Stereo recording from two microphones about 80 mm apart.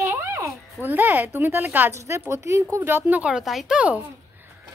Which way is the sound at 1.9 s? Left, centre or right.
Right.